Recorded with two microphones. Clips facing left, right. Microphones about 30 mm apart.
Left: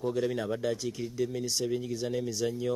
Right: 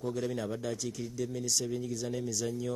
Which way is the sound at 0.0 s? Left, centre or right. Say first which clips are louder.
Left 4 dB; centre.